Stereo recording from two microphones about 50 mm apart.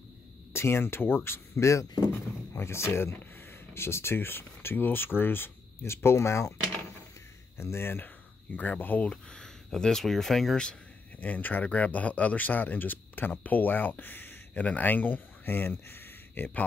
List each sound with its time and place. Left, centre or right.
0.5 s speech: left
2.5 s speech: left
7.5 s speech: left
8.5 s speech: left
9.0 s speech: centre
11.1 s speech: left
14.5 s speech: left